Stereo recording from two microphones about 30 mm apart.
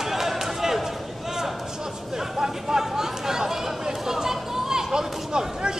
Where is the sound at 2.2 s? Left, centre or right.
Centre.